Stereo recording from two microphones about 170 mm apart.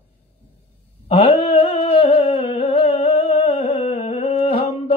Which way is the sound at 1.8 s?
35° left (ahead or behind).